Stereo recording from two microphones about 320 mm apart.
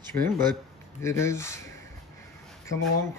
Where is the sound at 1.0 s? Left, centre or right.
Centre.